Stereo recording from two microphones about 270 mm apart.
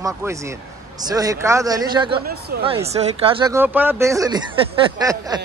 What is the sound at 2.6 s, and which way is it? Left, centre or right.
Speech, right.